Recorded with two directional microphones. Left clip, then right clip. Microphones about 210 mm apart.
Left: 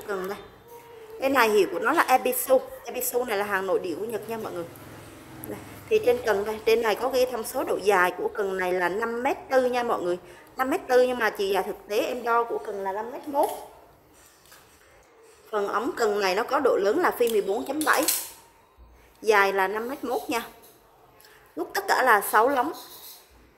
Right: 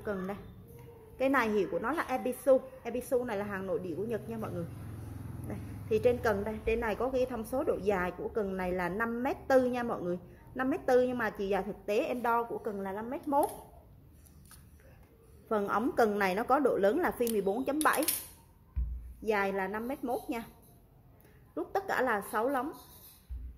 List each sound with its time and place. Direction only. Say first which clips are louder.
1.2 s a woman's voice: left 8 dB; centre (ahead or behind)
5.5 s a woman's voice: left 8 dB; centre (ahead or behind)
12.8 s speech: left 7 dB; 20° right (ahead or behind)
15.5 s a woman's voice: left 3 dB; 10° right (ahead or behind)
19.2 s a woman's voice: left 10 dB; 5° right (ahead or behind)
21.7 s a woman's voice: left 10 dB; centre (ahead or behind)